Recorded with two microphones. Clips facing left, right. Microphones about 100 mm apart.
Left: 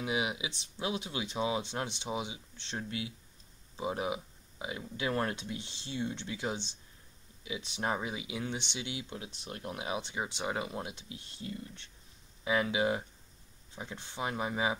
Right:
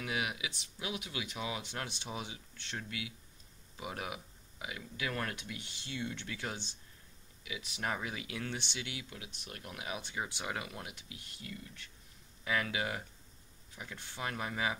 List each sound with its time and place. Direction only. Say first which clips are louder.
0.0 s speech: left 4 dB; 20° left (ahead or behind)